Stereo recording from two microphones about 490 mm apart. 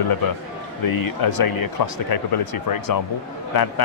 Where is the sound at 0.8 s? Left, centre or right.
Left.